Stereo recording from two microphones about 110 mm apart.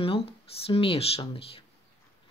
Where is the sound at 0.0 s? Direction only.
60° left (ahead or behind).